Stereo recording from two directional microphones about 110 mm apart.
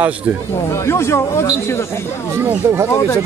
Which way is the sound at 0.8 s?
25° left (ahead or behind).